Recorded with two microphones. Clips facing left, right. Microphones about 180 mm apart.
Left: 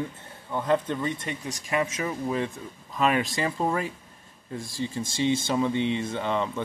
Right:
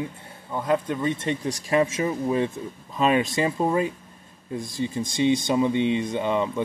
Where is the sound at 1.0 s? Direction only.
25° right (ahead or behind).